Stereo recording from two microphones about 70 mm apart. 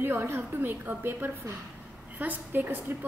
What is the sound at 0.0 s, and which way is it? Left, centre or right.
A woman's voice, right.